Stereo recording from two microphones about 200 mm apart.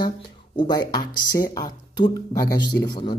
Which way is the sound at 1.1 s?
45° left (ahead or behind).